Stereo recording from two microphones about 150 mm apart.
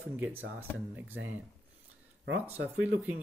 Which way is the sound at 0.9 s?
10° right (ahead or behind).